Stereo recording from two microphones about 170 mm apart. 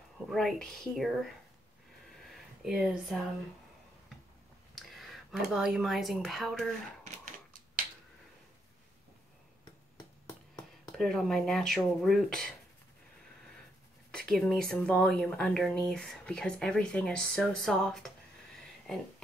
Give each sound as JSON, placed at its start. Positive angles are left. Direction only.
{"t": 0.3, "sound": "speech", "side_deg": 0}
{"t": 2.0, "sound": "a sound", "side_deg": 0}
{"t": 4.7, "sound": "speech", "side_deg": 0}
{"t": 7.1, "sound": "typewriter", "side_deg": -50}
{"t": 11.0, "sound": "speech", "side_deg": 0}
{"t": 14.1, "sound": "speech", "side_deg": 5}